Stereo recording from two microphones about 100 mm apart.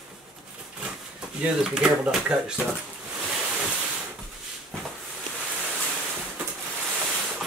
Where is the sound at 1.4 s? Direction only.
5° right (ahead or behind).